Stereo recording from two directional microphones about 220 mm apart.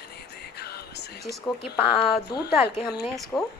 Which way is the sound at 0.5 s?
45° left (ahead or behind).